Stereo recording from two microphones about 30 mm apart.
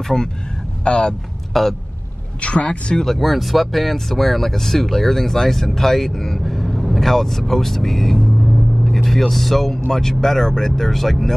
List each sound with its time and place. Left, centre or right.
0.0 s speech: centre
0.8 s a man's voice: left
1.5 s speech: centre
2.4 s a man's voice: left
3.1 s speech: centre
8.4 s vehicle: centre
9.3 s speech: centre
9.8 s speech: centre